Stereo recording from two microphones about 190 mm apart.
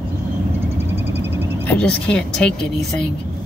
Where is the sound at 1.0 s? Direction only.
10° right (ahead or behind).